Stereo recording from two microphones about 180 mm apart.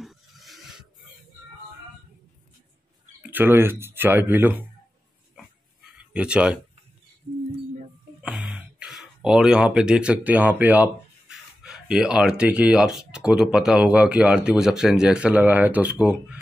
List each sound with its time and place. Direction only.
0.0 s a sound: centre (ahead or behind)
3.2 s speech: 10° right (ahead or behind)
6.1 s speech: 5° right (ahead or behind)
8.2 s speech: 5° right (ahead or behind)